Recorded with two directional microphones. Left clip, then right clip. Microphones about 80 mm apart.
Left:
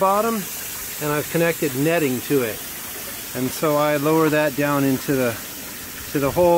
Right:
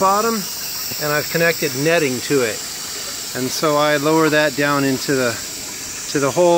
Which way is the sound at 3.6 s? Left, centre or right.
Centre.